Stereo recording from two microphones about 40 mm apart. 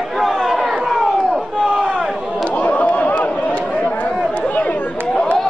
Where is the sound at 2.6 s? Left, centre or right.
Left.